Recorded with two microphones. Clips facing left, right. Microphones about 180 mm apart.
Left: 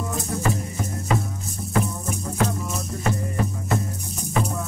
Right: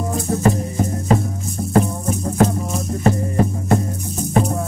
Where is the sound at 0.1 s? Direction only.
40° right (ahead or behind).